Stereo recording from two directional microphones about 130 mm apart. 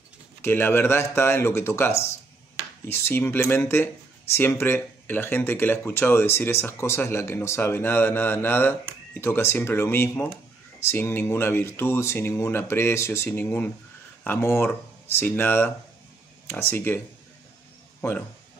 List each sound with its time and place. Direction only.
0.4 s speech: 15° left (ahead or behind)